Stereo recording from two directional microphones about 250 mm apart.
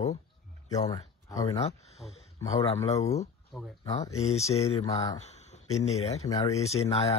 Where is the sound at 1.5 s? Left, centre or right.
Left.